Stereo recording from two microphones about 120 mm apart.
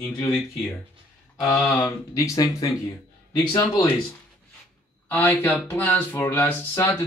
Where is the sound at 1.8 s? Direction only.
25° left (ahead or behind).